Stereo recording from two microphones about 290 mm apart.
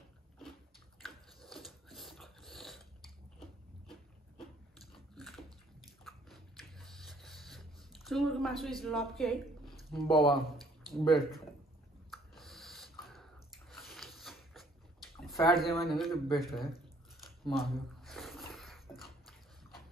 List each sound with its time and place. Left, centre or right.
1.0 s biting: centre
4.4 s biting: centre
9.9 s speech: centre
12.1 s snort: centre
15.4 s speech: centre
17.5 s a sound: centre